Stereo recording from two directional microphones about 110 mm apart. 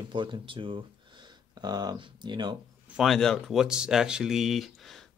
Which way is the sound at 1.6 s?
40° right (ahead or behind).